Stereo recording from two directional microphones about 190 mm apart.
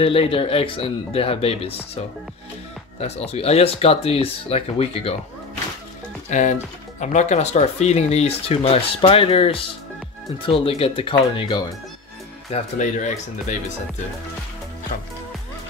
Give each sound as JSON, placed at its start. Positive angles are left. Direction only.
{"t": 0.0, "sound": "speech", "side_deg": 30}
{"t": 3.0, "sound": "speech", "side_deg": 35}
{"t": 6.3, "sound": "speech", "side_deg": 40}
{"t": 12.4, "sound": "speech", "side_deg": 35}